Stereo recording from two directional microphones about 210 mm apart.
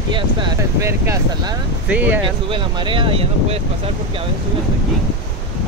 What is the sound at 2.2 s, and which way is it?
Speech, 25° right (ahead or behind).